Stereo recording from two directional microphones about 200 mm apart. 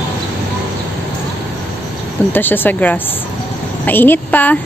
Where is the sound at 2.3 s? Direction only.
10° left (ahead or behind).